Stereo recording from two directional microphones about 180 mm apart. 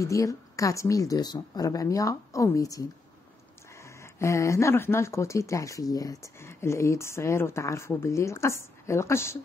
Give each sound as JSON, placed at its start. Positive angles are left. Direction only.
{"t": 0.0, "sound": "a woman's voice", "side_deg": 20}